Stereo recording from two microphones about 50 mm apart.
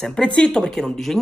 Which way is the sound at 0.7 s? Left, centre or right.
Centre.